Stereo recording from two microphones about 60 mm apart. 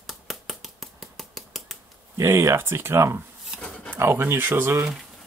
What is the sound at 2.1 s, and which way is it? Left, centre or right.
Speech, right.